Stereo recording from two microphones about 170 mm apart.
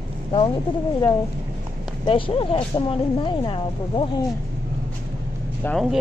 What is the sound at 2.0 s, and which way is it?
Speech, 30° left (ahead or behind).